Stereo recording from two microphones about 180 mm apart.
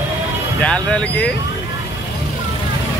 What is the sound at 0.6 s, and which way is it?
Speech, 5° left (ahead or behind).